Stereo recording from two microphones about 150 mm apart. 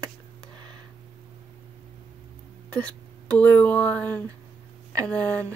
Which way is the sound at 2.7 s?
10° left (ahead or behind).